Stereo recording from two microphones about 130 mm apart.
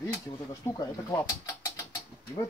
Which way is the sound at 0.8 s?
25° left (ahead or behind).